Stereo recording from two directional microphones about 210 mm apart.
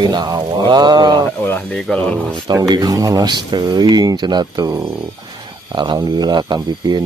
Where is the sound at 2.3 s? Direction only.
20° right (ahead or behind).